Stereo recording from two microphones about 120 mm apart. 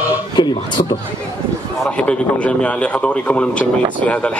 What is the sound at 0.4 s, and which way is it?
Speech, 40° left (ahead or behind).